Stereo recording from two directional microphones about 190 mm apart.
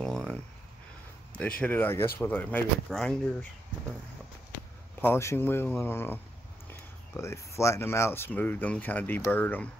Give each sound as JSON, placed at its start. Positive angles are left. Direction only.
{"t": 0.0, "sound": "a sound", "side_deg": 5}
{"t": 1.6, "sound": "speech", "side_deg": 10}
{"t": 5.0, "sound": "speech", "side_deg": 15}